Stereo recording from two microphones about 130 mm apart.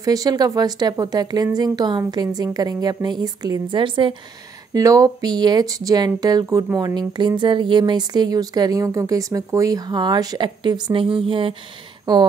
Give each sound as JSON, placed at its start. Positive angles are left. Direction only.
{"t": 0.0, "sound": "speech", "side_deg": -30}
{"t": 4.7, "sound": "speech", "side_deg": -25}
{"t": 12.1, "sound": "speech", "side_deg": -30}